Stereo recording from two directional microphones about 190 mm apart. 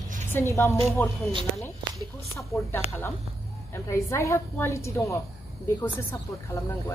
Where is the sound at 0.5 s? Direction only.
10° left (ahead or behind).